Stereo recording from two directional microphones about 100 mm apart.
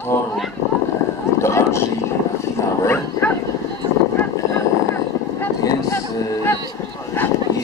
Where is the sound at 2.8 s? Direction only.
20° left (ahead or behind).